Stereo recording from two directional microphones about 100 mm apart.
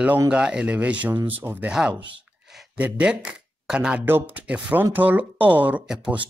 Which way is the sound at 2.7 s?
15° right (ahead or behind).